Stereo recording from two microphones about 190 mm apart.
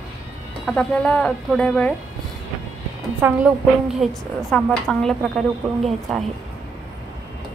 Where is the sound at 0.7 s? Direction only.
5° left (ahead or behind).